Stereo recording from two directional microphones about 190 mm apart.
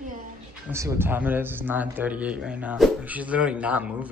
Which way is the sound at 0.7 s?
15° right (ahead or behind).